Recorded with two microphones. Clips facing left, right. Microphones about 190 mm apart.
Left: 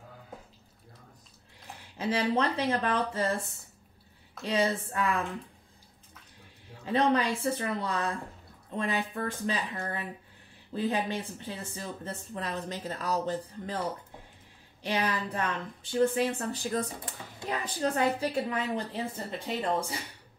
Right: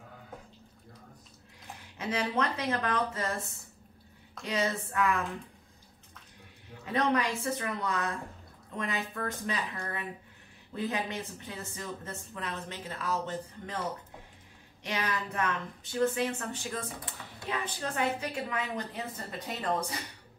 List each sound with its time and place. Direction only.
2.0 s a woman's voice: 30° left (ahead or behind)
4.4 s a woman's voice: 30° left (ahead or behind)
6.8 s a woman's voice: 30° left (ahead or behind)
14.8 s a woman's voice: 30° left (ahead or behind)